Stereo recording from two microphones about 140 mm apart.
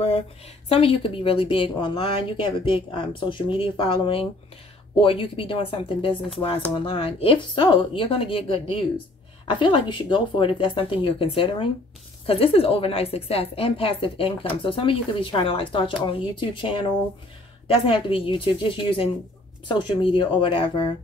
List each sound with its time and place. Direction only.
0.7 s a woman's voice: 40° left (ahead or behind)
17.8 s a woman's voice: 40° left (ahead or behind)